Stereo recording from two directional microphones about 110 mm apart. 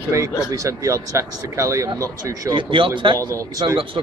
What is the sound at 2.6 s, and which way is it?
Speech, 50° right (ahead or behind).